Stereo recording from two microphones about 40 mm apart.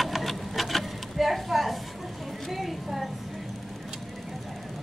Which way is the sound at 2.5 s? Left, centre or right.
Centre.